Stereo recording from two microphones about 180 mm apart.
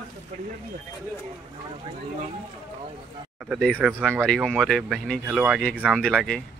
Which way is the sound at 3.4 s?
Centre (ahead or behind).